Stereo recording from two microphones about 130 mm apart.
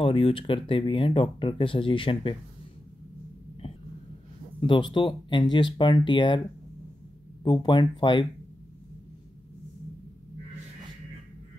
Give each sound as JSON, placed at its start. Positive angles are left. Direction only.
{"t": 0.0, "sound": "speech", "side_deg": 45}
{"t": 4.6, "sound": "speech", "side_deg": 40}
{"t": 7.4, "sound": "speech", "side_deg": 40}